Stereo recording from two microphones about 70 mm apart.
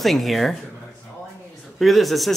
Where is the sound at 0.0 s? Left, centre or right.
Centre.